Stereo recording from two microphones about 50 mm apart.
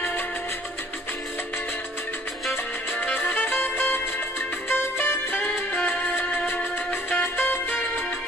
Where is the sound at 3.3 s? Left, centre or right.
Left.